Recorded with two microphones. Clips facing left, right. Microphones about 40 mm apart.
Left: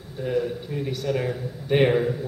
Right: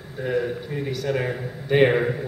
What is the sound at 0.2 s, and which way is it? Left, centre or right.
A man's voice, right.